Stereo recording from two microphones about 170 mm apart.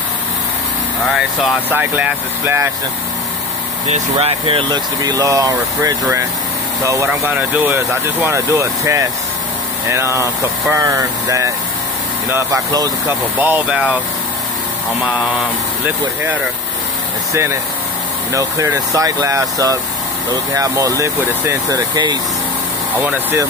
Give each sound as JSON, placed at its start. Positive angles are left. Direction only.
{"t": 1.7, "sound": "speech", "side_deg": -10}
{"t": 3.8, "sound": "speech", "side_deg": -40}
{"t": 17.3, "sound": "speech", "side_deg": -15}
{"t": 22.9, "sound": "speech", "side_deg": -10}